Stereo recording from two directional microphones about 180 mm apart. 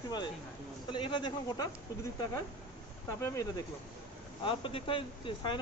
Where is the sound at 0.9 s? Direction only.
25° left (ahead or behind).